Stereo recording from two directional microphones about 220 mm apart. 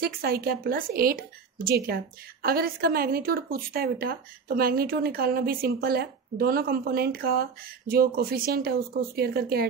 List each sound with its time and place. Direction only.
0.0 s a woman's voice: 45° right (ahead or behind)